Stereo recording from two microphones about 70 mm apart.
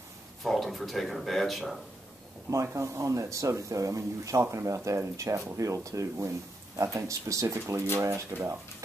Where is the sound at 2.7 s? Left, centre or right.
Right.